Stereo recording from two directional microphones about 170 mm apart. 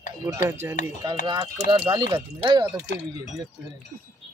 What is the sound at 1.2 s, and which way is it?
Speech, 30° right (ahead or behind).